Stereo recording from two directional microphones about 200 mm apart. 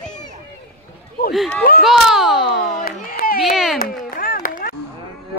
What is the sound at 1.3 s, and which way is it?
Speech, 5° left (ahead or behind).